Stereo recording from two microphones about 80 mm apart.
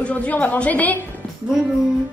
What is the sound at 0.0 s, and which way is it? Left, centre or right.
Speech, centre.